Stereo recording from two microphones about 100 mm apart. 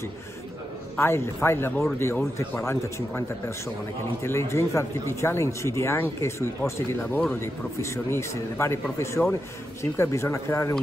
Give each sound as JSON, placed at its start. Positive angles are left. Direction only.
{"t": 0.9, "sound": "a man's voice", "side_deg": 25}
{"t": 7.0, "sound": "speech", "side_deg": 10}
{"t": 7.3, "sound": "a man's voice", "side_deg": 25}